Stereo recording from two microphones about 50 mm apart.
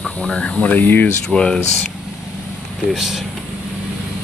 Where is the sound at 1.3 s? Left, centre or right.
Centre.